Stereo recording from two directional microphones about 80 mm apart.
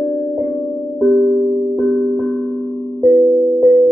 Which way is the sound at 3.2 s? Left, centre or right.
Right.